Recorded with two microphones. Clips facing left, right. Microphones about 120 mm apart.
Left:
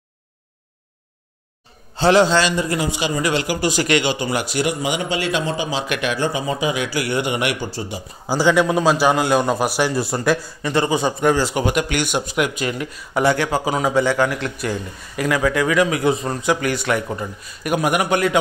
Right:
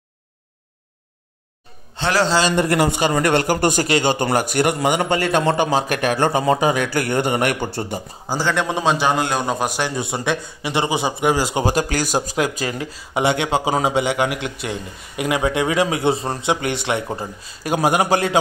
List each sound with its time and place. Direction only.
2.0 s a man's voice: 25° left (ahead or behind)
2.5 s a man's voice: 65° right (ahead or behind)
8.3 s a man's voice: 10° left (ahead or behind)
10.6 s speech: 15° right (ahead or behind)
11.5 s a man's voice: 35° right (ahead or behind)